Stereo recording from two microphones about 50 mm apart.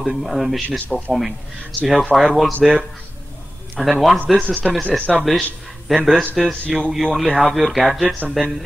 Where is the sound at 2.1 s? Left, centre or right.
Centre.